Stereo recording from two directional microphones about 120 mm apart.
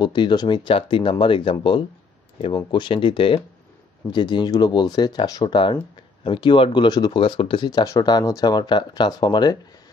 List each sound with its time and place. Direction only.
0.0 s speech: 40° left (ahead or behind)